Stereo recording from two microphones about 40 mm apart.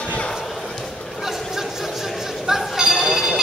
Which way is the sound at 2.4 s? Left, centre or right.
Centre.